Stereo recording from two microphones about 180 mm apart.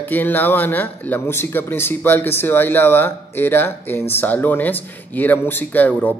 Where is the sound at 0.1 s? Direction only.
10° left (ahead or behind).